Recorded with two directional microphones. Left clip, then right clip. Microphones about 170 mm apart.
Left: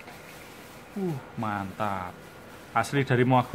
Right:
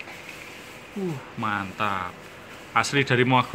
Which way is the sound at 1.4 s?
20° left (ahead or behind).